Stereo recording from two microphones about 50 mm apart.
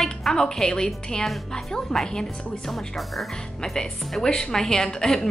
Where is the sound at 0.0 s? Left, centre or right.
Centre.